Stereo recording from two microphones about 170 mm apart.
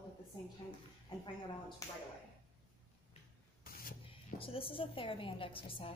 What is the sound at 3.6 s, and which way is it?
Spray, 60° left (ahead or behind).